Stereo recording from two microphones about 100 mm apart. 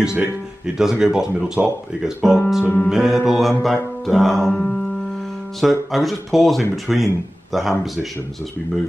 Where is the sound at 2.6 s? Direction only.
20° left (ahead or behind).